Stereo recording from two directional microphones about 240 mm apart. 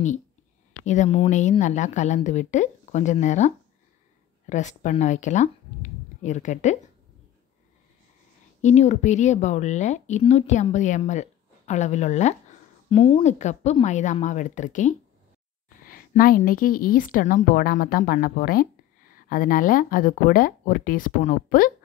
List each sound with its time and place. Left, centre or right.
0.8 s a woman's voice: left
8.5 s a woman's voice: left